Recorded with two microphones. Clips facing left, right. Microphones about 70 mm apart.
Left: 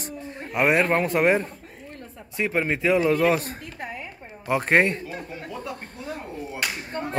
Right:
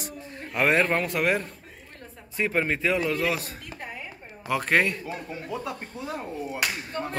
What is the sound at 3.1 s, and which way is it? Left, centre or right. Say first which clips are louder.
Speech: left 6 dB; left.